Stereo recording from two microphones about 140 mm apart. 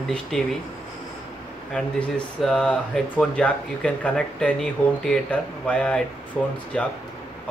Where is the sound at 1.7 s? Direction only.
5° left (ahead or behind).